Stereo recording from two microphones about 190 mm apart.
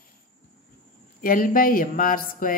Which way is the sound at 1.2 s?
45° left (ahead or behind).